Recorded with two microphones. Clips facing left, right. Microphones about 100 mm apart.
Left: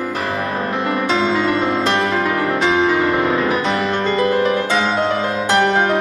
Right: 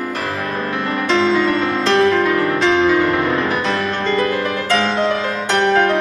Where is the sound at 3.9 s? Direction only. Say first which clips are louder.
Left 1 dB; 15° left (ahead or behind).